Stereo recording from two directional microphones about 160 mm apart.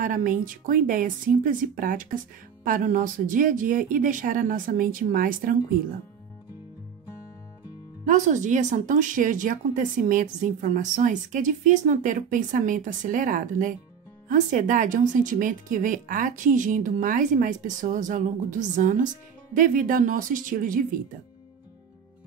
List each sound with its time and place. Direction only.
0.0 s a woman's voice: 55° right (ahead or behind)
8.0 s a woman's voice: 50° right (ahead or behind)